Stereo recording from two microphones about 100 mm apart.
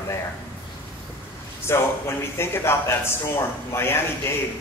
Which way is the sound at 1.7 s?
25° left (ahead or behind).